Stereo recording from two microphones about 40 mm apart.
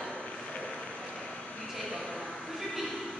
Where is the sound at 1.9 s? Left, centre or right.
Left.